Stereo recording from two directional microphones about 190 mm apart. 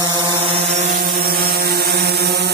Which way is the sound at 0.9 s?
55° right (ahead or behind).